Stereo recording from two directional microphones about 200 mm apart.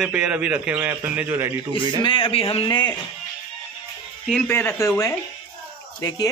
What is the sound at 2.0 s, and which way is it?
Speech, 25° left (ahead or behind).